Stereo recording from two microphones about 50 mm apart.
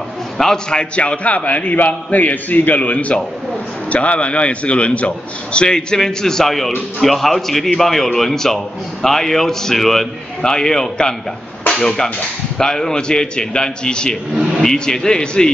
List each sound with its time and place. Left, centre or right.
0.4 s a man's voice: centre
14.3 s vehicle: centre
14.6 s a man's voice: centre